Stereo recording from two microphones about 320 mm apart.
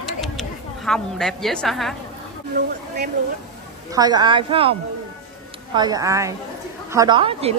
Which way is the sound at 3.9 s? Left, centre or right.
Centre.